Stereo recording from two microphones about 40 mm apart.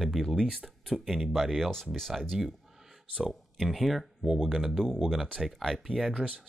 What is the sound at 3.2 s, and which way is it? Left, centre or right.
Speech, centre.